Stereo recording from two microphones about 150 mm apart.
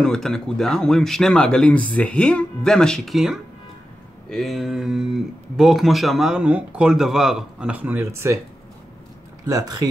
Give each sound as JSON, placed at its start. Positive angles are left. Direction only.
{"t": 0.0, "sound": "speech", "side_deg": 5}
{"t": 9.5, "sound": "speech", "side_deg": -25}